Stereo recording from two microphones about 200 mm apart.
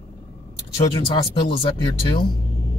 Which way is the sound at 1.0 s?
25° left (ahead or behind).